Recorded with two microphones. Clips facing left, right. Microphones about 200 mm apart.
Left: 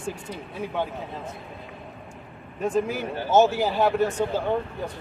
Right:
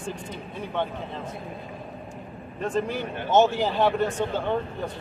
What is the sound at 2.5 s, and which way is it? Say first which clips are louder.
Speech: left 2 dB; 10° left (ahead or behind).